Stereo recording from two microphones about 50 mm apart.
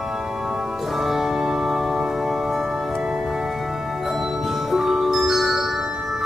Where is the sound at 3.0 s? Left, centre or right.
Centre.